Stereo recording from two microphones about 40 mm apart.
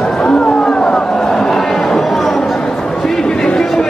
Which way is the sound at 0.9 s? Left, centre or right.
Centre.